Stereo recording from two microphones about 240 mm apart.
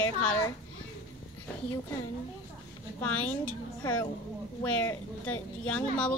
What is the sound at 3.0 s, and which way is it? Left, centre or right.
A woman's voice, centre.